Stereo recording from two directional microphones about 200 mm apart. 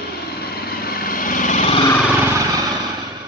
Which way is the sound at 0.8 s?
50° left (ahead or behind).